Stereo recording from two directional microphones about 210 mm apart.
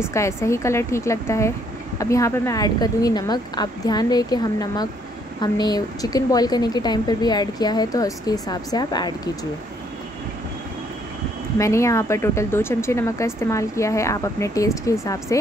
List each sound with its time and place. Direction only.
0.0 s a woman's voice: 10° left (ahead or behind)
11.5 s speech: 15° left (ahead or behind)